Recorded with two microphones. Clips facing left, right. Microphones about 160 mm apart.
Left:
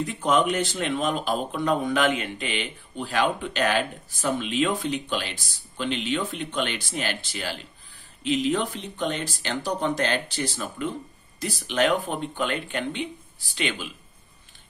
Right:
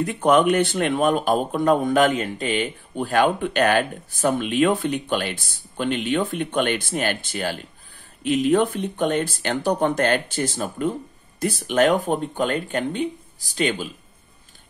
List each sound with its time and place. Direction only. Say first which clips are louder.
0.0 s a man's voice: right 5 dB; 60° right (ahead or behind); by 13.8 s 40° right (ahead or behind)